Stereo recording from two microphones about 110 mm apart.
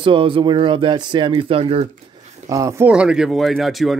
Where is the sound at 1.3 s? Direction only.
55° right (ahead or behind).